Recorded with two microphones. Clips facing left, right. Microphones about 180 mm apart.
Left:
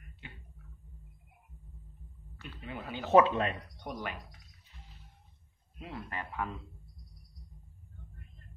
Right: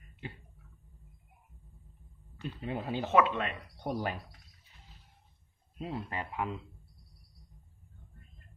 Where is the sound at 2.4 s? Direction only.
40° right (ahead or behind).